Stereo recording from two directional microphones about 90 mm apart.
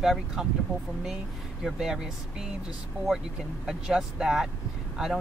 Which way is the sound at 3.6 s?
5° right (ahead or behind).